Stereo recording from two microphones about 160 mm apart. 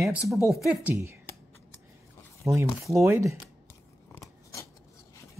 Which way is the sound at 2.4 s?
20° right (ahead or behind).